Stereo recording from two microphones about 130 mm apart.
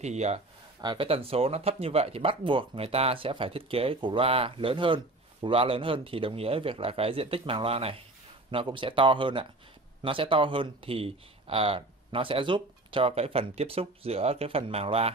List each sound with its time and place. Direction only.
0.0 s speech: 60° right (ahead or behind)
0.7 s speech: 40° right (ahead or behind)